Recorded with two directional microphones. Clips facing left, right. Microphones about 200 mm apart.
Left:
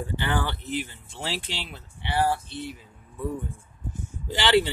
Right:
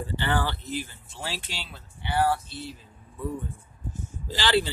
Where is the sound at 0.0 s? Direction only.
15° left (ahead or behind).